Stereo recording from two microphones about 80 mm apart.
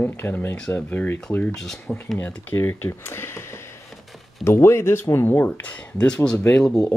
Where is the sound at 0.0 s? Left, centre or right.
Left.